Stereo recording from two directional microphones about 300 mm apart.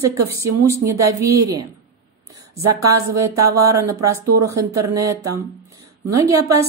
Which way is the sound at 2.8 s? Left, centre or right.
Centre.